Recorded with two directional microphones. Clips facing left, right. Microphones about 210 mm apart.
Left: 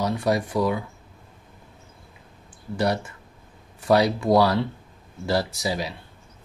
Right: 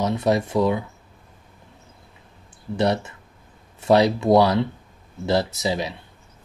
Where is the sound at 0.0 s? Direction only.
25° right (ahead or behind).